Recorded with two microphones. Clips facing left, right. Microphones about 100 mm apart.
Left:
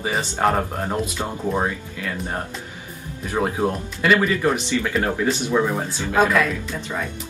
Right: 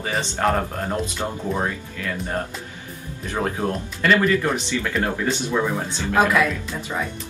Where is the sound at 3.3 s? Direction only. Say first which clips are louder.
Left 2 dB; 15° left (ahead or behind).